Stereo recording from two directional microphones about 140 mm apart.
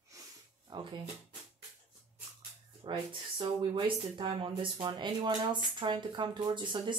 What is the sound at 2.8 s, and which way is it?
Speech, 35° right (ahead or behind).